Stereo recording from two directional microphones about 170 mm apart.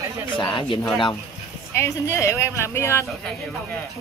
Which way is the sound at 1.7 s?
15° left (ahead or behind).